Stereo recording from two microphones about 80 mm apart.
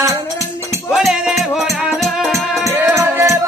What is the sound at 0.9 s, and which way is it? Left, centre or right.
Music, centre.